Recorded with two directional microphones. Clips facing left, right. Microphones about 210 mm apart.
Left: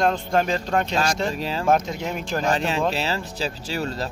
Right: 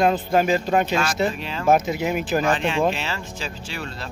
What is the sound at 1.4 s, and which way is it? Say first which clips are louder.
Speech: left 3 dB; 35° left (ahead or behind).